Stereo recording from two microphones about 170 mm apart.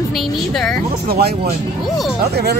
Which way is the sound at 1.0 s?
65° right (ahead or behind).